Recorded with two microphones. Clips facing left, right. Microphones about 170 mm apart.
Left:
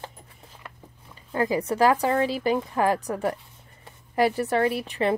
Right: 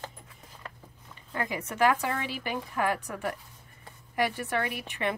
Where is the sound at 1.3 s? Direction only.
30° left (ahead or behind).